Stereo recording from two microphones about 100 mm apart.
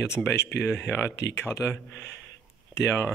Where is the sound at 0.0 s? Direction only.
25° left (ahead or behind).